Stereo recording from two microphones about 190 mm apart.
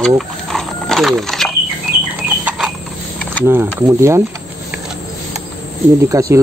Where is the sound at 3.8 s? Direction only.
15° right (ahead or behind).